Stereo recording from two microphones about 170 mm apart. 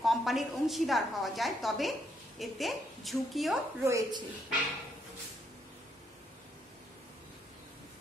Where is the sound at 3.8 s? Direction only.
20° right (ahead or behind).